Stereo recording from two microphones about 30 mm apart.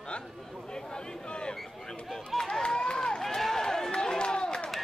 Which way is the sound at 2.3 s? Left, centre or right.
Centre.